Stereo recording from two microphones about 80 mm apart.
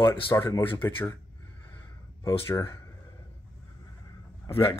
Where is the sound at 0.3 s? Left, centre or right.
Left.